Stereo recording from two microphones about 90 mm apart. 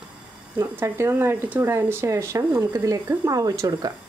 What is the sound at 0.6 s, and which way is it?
Speech, 30° right (ahead or behind).